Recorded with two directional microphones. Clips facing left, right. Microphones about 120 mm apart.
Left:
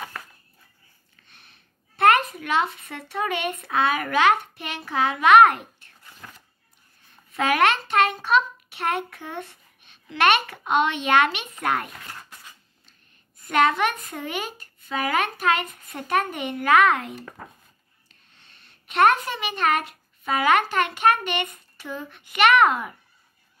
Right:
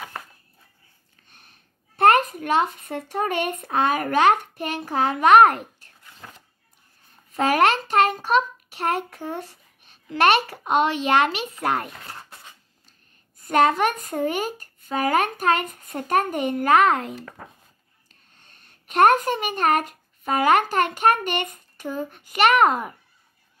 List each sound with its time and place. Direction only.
1.2 s a woman's voice: 45° right (ahead or behind)
7.3 s a child's voice: 40° right (ahead or behind)
13.4 s a child's voice: 40° right (ahead or behind)